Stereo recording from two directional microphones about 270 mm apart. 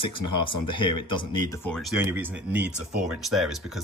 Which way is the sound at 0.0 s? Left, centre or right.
Centre.